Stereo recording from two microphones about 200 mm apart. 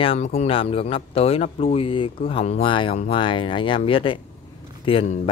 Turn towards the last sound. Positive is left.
turn(degrees=25)  # may be behind; listen again after turning